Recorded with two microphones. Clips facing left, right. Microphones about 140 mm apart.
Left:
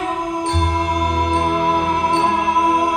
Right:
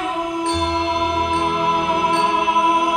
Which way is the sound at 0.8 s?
45° left (ahead or behind).